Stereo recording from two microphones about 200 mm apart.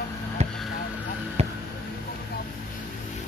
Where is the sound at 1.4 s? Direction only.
30° right (ahead or behind).